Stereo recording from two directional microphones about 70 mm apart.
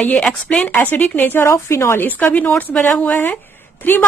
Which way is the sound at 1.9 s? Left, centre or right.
Left.